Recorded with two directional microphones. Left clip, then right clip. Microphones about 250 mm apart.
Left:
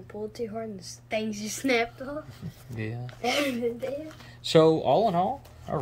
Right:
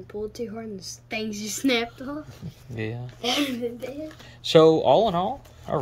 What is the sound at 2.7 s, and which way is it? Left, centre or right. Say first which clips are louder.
Speech: right 5 dB; centre.